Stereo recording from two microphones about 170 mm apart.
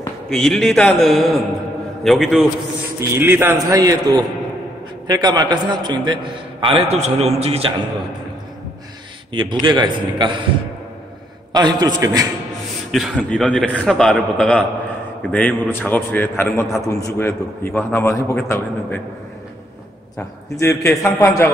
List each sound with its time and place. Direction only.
0.3 s a man's voice: 5° left (ahead or behind)
3.0 s a man's voice: 15° right (ahead or behind); by 7.7 s 35° right (ahead or behind)
9.3 s a man's voice: 30° right (ahead or behind)
11.5 s a man's voice: 25° right (ahead or behind)
12.9 s a man's voice: 5° left (ahead or behind)
20.2 s a man's voice: 15° left (ahead or behind)